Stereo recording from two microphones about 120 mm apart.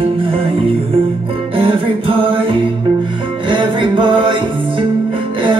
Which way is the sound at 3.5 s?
45° right (ahead or behind).